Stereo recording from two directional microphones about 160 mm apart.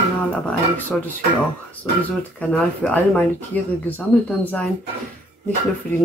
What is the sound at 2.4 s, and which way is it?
Speech, 10° left (ahead or behind).